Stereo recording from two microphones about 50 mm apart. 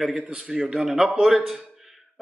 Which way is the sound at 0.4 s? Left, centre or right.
Centre.